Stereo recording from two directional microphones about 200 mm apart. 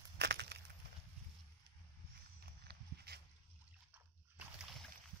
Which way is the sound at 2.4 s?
55° right (ahead or behind).